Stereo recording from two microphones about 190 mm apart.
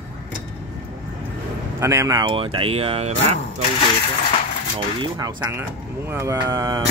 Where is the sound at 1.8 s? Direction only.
15° right (ahead or behind); by 3.4 s 30° right (ahead or behind).